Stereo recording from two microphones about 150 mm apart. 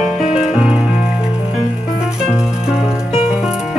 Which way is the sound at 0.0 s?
5° right (ahead or behind).